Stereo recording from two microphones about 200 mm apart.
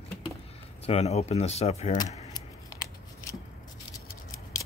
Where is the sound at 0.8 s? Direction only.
30° left (ahead or behind).